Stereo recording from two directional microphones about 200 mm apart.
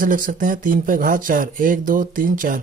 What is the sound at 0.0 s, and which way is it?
Speech, 45° right (ahead or behind).